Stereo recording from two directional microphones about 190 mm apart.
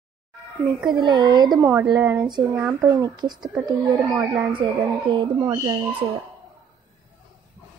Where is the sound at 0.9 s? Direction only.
20° right (ahead or behind).